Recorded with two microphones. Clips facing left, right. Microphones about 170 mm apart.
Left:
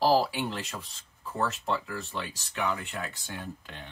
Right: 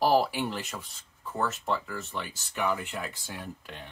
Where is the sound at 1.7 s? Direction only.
Centre (ahead or behind).